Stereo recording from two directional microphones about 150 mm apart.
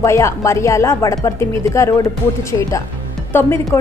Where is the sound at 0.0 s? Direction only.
20° left (ahead or behind).